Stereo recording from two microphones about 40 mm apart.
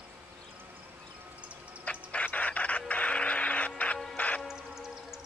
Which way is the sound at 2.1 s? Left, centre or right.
Left.